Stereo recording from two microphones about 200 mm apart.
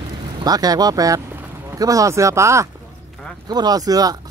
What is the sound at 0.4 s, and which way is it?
Speech, 20° right (ahead or behind).